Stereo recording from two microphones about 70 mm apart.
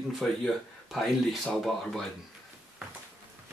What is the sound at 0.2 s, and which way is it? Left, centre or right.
Speech, centre.